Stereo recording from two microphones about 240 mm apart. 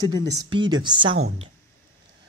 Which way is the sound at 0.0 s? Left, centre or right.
Centre.